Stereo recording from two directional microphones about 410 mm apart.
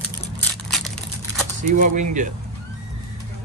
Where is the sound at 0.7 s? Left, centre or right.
Centre.